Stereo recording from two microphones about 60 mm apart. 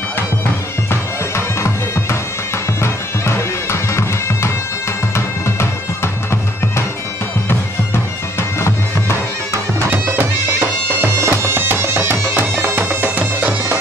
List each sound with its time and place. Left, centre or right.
2.8 s bagpipes: left
10.5 s bagpipes: right
11.1 s music: right